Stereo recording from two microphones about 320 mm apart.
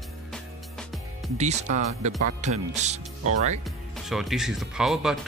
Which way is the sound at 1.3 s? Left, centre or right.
Right.